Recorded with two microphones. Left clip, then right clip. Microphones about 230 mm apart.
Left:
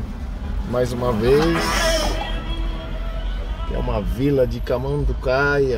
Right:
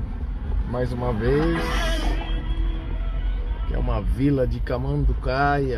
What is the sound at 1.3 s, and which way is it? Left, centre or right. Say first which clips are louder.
Speech: left 6 dB; left.